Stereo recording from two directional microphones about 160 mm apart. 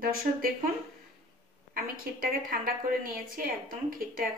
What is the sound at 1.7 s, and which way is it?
A woman's voice, 65° right (ahead or behind).